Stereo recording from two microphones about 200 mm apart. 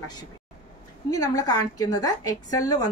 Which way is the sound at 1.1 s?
15° left (ahead or behind).